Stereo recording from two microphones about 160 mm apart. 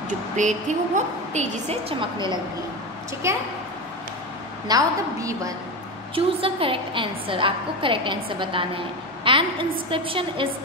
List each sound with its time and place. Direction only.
0.4 s a woman's voice: 50° right (ahead or behind); by 2.4 s 30° right (ahead or behind)
4.6 s a woman's voice: 20° right (ahead or behind)
6.1 s a woman's voice: 35° right (ahead or behind)